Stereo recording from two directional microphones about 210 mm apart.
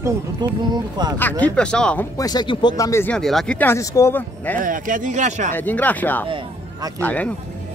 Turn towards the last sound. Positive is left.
turn(degrees=5)  # may be behind; listen again after turning